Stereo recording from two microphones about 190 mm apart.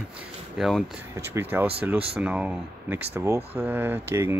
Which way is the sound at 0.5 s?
Centre (ahead or behind).